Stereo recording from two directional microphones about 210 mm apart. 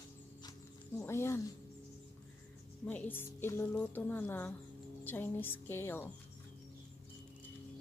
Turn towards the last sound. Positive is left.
turn(degrees=10)  # may be behind; listen again after turning